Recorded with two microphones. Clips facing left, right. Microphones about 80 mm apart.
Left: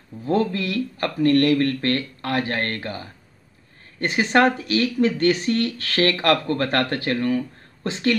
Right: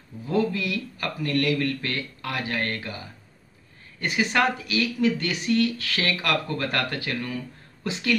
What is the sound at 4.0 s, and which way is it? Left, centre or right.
Speech, left.